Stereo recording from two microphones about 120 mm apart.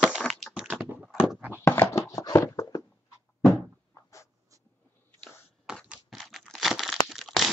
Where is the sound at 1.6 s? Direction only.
20° left (ahead or behind).